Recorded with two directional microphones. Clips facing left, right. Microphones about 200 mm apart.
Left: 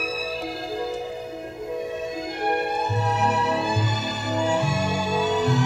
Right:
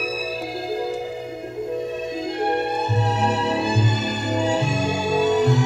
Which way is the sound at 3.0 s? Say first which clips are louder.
Right 1 dB; 30° right (ahead or behind).